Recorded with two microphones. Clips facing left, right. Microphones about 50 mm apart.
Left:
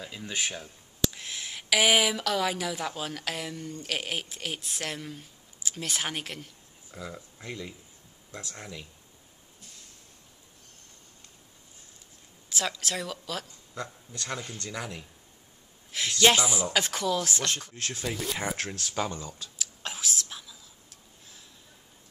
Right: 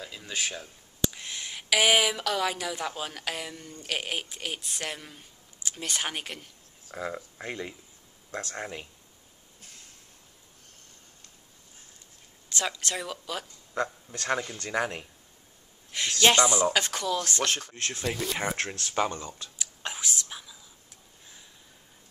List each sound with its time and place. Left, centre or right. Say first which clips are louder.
0.0 s speech: even; centre
1.1 s speech: even; centre
6.9 s speech: right 6 dB; right
8.3 s speech: right 6 dB; right
8.5 s speech: right 5 dB; right
12.4 s speech: even; centre
13.7 s a man's voice: right 7 dB; right
15.9 s speech: even; centre
18.6 s speech: right 2 dB; centre
18.9 s speech: right 4 dB; right
19.6 s whispering: right 1 dB; centre